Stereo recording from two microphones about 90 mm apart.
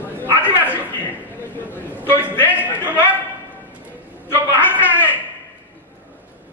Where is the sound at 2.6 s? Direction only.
20° left (ahead or behind).